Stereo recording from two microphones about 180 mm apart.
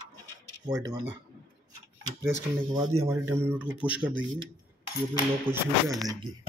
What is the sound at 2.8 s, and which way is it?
Speech, 15° right (ahead or behind).